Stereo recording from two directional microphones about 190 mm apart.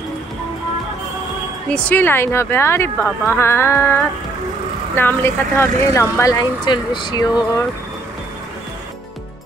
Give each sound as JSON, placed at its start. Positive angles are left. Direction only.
{"t": 1.7, "sound": "speech", "side_deg": 10}